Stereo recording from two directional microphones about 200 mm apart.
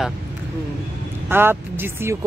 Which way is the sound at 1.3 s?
10° right (ahead or behind).